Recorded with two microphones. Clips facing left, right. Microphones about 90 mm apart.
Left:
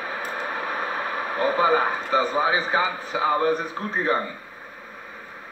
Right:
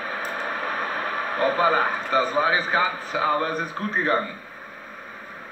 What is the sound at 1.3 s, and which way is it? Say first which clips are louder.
A man's voice: even; 20° left (ahead or behind).